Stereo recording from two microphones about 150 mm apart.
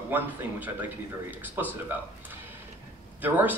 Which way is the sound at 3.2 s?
10° right (ahead or behind).